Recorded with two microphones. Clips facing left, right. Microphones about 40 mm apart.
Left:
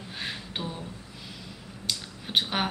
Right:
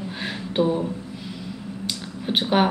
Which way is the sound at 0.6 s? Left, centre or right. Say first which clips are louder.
Right 17 dB; right.